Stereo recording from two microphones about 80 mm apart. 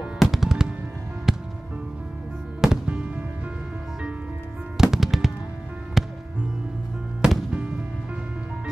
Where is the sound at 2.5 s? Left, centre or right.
Centre.